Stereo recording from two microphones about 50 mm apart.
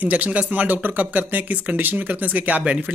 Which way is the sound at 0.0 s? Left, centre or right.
Right.